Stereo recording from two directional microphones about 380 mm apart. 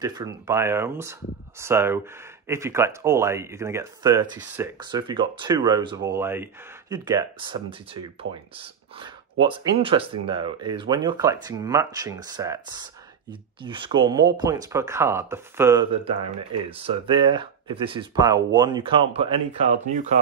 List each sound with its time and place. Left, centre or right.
0.0 s speech: centre